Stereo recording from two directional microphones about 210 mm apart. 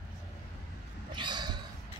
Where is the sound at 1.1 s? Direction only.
20° right (ahead or behind).